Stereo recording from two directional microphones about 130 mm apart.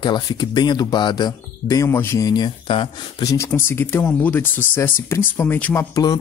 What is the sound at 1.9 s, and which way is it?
Speech, 20° left (ahead or behind).